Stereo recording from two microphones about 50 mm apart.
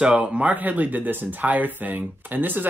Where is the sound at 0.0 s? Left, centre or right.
Right.